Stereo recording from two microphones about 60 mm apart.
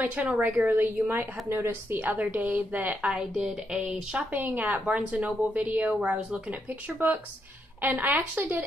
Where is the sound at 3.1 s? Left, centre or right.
Centre.